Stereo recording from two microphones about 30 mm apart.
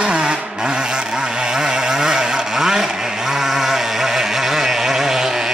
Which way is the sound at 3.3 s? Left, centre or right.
Centre.